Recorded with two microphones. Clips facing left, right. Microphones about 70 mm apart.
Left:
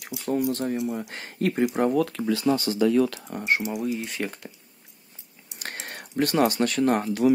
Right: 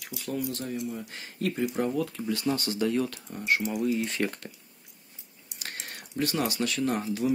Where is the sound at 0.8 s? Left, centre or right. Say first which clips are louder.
Left 6 dB; left.